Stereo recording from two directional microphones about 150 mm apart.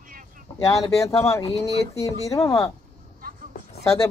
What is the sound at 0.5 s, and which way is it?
Speech, 25° left (ahead or behind).